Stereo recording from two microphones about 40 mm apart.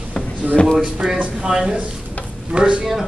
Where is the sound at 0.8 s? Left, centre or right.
Centre.